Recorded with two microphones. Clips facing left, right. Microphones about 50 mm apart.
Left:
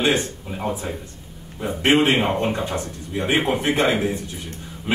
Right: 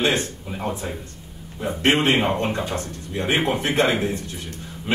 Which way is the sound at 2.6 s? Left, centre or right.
Centre.